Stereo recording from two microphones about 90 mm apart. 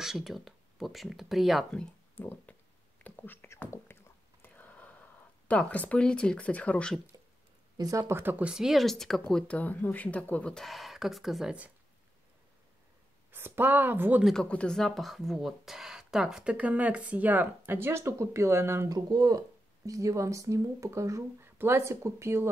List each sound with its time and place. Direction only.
0.0 s speech: 5° right (ahead or behind)
1.8 s speech: 15° left (ahead or behind)
3.0 s whispering: 25° left (ahead or behind)
5.5 s speech: 15° left (ahead or behind)
7.7 s speech: 40° right (ahead or behind)
8.2 s speech: 25° right (ahead or behind)
8.5 s speech: 5° right (ahead or behind)
9.3 s speech: 15° left (ahead or behind)
10.5 s speech: centre (ahead or behind)
13.3 s speech: 25° right (ahead or behind)
14.2 s speech: 5° left (ahead or behind); by 18.9 s 25° right (ahead or behind)
18.9 s speech: 45° right (ahead or behind)